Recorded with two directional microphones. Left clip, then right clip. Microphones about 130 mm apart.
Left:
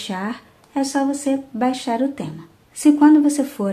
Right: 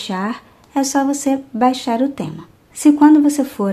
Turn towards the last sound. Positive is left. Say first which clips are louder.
# right 3 dB
turn(degrees=-25)  # may be behind; listen again after turning